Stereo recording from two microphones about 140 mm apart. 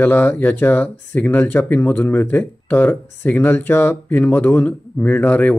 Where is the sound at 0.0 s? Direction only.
10° left (ahead or behind).